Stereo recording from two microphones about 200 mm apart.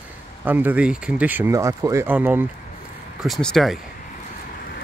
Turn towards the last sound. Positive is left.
turn(degrees=0)  # may be behind; listen again after turning